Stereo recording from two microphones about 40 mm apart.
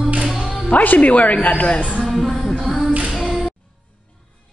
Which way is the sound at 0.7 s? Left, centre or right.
Left.